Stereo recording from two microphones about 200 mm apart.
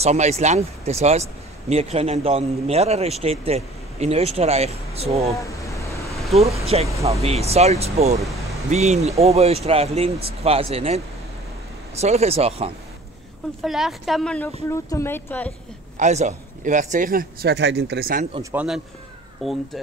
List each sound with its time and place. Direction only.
0.0 s a man's voice: 35° right (ahead or behind)
5.4 s vehicle: 15° left (ahead or behind)
6.0 s vehicle: centre (ahead or behind)
6.7 s a man's voice: 30° right (ahead or behind)
12.0 s a man's voice: 35° right (ahead or behind)
13.6 s speech: centre (ahead or behind)
16.0 s speech: 35° right (ahead or behind); by 18.2 s 50° right (ahead or behind)
18.3 s a man's voice: 15° right (ahead or behind)